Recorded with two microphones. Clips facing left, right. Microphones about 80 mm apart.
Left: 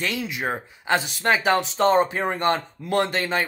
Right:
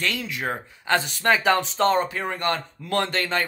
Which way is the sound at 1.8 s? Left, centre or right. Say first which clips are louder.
Left 4 dB; left.